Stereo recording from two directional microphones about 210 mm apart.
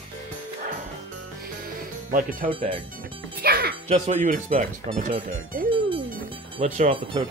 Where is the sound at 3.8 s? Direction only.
30° right (ahead or behind).